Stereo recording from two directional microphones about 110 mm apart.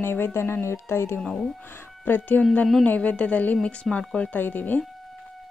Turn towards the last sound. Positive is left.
turn(degrees=15)  # may be behind; listen again after turning